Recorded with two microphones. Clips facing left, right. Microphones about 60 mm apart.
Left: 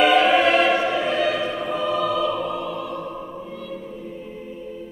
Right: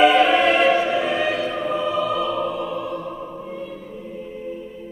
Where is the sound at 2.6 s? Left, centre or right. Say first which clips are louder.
Right 2 dB; right.